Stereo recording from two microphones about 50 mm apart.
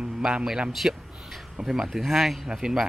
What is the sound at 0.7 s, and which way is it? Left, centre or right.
Speech, centre.